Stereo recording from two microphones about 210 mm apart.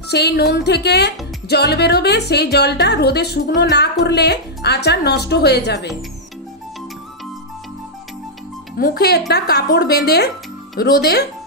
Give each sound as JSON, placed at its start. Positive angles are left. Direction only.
{"t": 0.1, "sound": "speech", "side_deg": 50}
{"t": 8.7, "sound": "speech", "side_deg": 45}